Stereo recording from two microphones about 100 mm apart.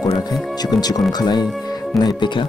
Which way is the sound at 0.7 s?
40° left (ahead or behind).